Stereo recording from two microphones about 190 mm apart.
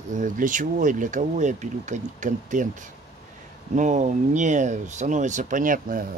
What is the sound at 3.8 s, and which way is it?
Speech, 40° right (ahead or behind).